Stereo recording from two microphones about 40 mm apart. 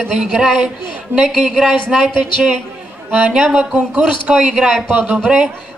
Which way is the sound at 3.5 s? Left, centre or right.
Right.